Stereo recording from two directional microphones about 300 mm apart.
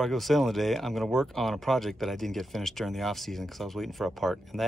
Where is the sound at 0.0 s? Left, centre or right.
Centre.